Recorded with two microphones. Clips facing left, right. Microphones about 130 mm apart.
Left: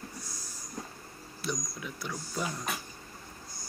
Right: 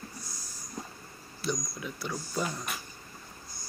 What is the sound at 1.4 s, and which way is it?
Speech, centre (ahead or behind).